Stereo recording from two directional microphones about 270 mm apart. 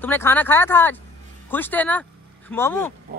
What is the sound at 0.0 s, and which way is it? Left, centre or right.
Speech, centre.